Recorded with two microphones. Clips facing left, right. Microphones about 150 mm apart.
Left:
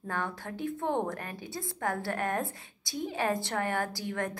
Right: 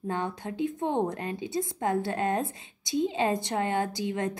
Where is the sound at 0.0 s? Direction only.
20° right (ahead or behind).